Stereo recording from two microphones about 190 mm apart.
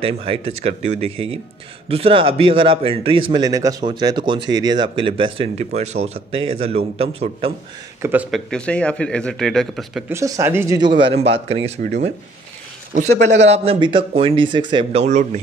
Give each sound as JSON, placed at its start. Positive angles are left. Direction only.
{"t": 0.0, "sound": "speech", "side_deg": -30}
{"t": 8.0, "sound": "speech", "side_deg": -10}
{"t": 8.5, "sound": "speech", "side_deg": 5}
{"t": 10.0, "sound": "speech", "side_deg": -15}